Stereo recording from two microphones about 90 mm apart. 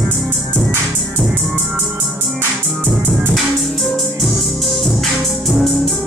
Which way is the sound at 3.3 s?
Centre (ahead or behind).